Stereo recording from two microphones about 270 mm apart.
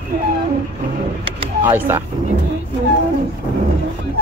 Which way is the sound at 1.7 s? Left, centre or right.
Centre.